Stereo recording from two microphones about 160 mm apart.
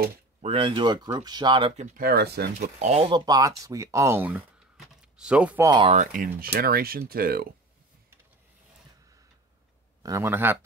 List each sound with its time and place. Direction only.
0.4 s speech: 35° right (ahead or behind)
2.0 s speech: 80° right
2.8 s speech: 45° right (ahead or behind)
3.1 s speech: 25° right (ahead or behind); by 5.6 s 5° right (ahead or behind)
5.6 s speech: 25° right (ahead or behind)
5.9 s speech: 55° right (ahead or behind); by 7.4 s 70° right (ahead or behind)
10.0 s speech: 15° right (ahead or behind)